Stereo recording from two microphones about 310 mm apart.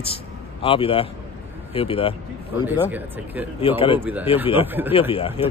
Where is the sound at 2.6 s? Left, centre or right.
Centre.